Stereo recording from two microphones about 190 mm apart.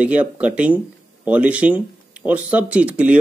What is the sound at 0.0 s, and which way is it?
A man's voice, 5° right (ahead or behind).